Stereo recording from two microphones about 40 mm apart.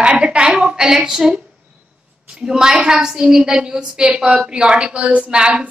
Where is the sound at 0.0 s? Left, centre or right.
Right.